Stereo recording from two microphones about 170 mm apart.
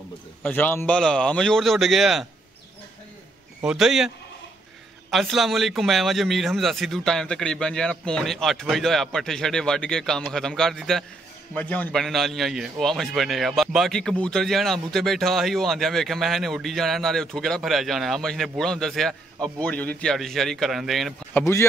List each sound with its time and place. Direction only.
0.4 s a man's voice: 10° left (ahead or behind)
3.6 s a man's voice: 5° right (ahead or behind)
5.1 s a man's voice: centre (ahead or behind)
21.4 s speech: 15° left (ahead or behind)